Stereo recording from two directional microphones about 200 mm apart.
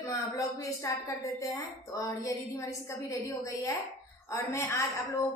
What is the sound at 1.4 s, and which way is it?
Speech, 15° left (ahead or behind).